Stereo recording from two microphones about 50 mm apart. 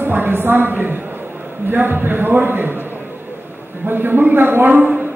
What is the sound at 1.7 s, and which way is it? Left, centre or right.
Speech, right.